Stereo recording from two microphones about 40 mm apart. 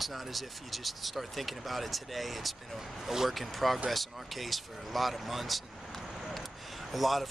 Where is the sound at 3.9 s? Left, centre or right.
Centre.